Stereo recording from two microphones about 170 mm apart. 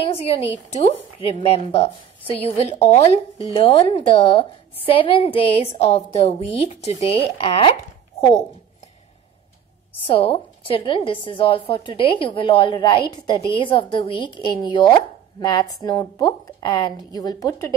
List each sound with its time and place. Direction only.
0.0 s a woman's voice: 35° left (ahead or behind)
10.0 s a woman's voice: 35° left (ahead or behind)